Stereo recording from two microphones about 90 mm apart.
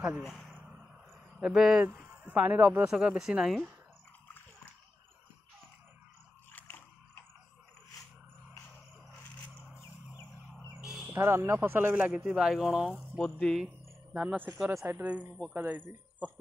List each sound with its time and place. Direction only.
0.2 s a sound: centre (ahead or behind)
1.4 s speech: 5° right (ahead or behind)
1.9 s speech: 20° right (ahead or behind)
2.9 s speech: 5° right (ahead or behind)
10.8 s bird: 5° right (ahead or behind)
11.1 s speech: 30° right (ahead or behind); by 13.0 s 10° right (ahead or behind)
13.1 s speech: 5° left (ahead or behind)
14.1 s speech: 15° right (ahead or behind)
14.7 s speech: 30° right (ahead or behind)
15.5 s speech: 20° right (ahead or behind)